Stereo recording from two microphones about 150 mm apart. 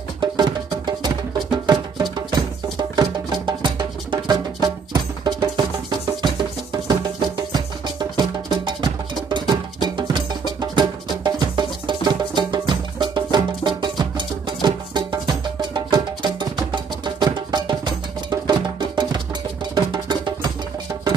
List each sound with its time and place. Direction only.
0.2 s music: 30° right (ahead or behind)